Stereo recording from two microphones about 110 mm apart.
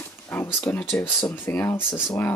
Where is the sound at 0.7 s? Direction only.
20° left (ahead or behind).